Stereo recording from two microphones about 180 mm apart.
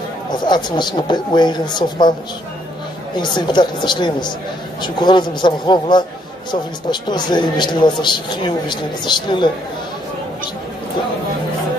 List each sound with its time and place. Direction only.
0.3 s speech: 25° left (ahead or behind)
3.2 s speech: 25° left (ahead or behind)